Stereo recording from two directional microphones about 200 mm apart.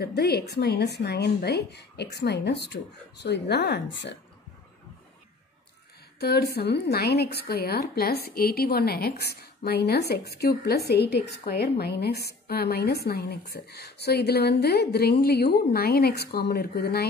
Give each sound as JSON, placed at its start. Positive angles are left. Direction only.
{"t": 0.0, "sound": "a woman's voice", "side_deg": 55}
{"t": 6.1, "sound": "a woman's voice", "side_deg": 55}